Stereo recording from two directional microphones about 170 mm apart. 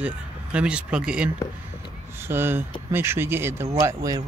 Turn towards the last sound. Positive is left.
turn(degrees=-20)  # may be behind; listen again after turning